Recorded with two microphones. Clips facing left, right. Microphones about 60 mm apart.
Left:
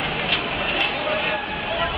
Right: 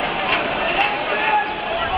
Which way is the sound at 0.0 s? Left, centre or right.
Right.